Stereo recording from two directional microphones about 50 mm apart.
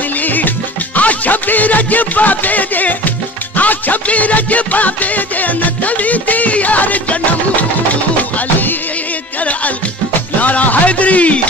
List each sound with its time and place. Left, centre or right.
0.9 s music: left
10.4 s speech: left